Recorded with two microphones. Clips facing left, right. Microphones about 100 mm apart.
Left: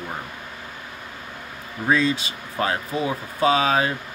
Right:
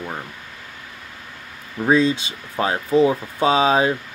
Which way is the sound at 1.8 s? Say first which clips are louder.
Right 4 dB; 25° right (ahead or behind).